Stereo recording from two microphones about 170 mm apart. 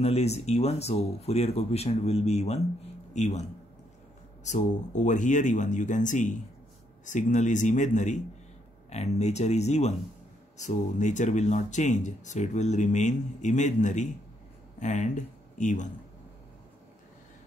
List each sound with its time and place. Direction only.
0.0 s a man's voice: 40° left (ahead or behind)
4.5 s speech: 45° left (ahead or behind)